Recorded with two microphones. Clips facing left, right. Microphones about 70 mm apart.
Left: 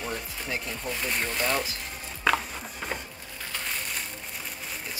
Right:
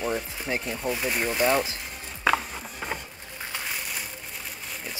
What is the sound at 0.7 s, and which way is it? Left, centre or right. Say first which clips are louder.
Speech: right 4 dB; centre.